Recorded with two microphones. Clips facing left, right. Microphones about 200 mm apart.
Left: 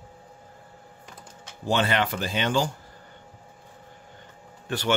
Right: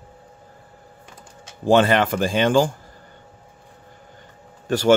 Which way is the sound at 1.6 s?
50° right (ahead or behind).